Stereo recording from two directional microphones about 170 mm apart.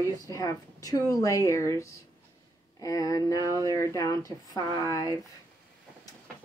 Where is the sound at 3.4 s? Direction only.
20° right (ahead or behind).